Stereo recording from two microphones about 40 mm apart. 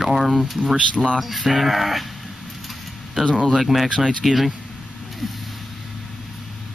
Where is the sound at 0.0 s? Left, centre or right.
Centre.